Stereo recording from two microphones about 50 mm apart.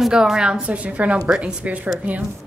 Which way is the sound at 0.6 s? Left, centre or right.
Right.